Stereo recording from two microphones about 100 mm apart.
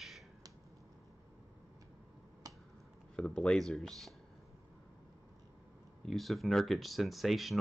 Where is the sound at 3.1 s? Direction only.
10° left (ahead or behind).